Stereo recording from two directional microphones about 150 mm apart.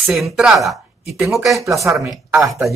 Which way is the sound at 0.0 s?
Centre (ahead or behind).